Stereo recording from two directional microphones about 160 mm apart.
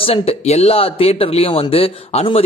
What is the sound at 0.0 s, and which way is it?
Speech, 40° left (ahead or behind).